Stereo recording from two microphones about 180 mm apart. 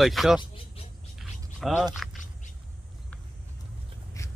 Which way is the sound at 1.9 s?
Centre (ahead or behind).